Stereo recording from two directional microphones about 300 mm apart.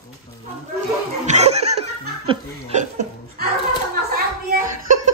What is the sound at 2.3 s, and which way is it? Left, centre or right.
Chuckle, right.